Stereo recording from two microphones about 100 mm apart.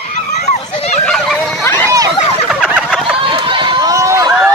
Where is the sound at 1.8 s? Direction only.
35° right (ahead or behind).